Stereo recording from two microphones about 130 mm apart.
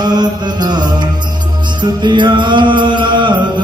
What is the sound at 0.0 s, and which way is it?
Music, 35° right (ahead or behind).